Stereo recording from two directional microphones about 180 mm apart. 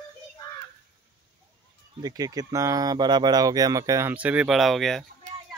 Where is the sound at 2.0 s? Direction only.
20° right (ahead or behind); by 5.0 s centre (ahead or behind).